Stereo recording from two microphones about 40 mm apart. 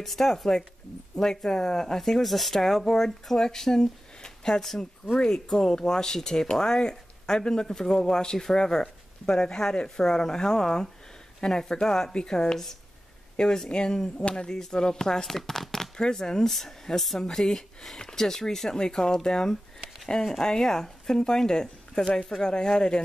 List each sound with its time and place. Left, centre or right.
0.0 s speech: centre; by 12.5 s left
13.7 s speech: centre
17.2 s speech: centre